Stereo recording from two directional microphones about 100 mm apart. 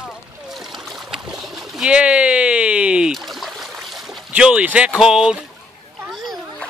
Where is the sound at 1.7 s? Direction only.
10° right (ahead or behind).